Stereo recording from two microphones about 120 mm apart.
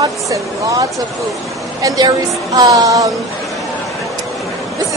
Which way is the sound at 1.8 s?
30° right (ahead or behind).